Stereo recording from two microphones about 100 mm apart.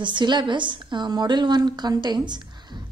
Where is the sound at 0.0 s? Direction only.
50° right (ahead or behind).